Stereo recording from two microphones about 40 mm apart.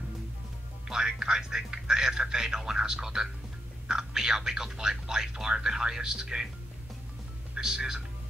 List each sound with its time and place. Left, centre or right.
0.8 s speech: centre
7.5 s speech: centre